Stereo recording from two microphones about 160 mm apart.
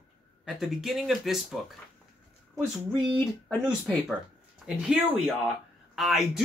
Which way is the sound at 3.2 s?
15° left (ahead or behind).